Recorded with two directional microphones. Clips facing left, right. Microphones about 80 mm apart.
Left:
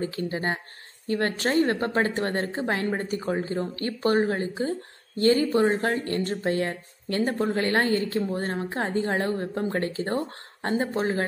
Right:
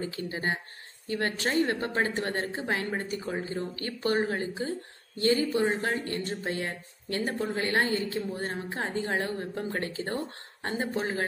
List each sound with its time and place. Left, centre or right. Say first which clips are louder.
0.0 s a woman's voice: left 4 dB; left